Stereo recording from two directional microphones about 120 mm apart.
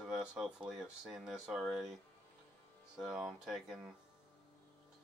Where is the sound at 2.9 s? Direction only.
5° right (ahead or behind).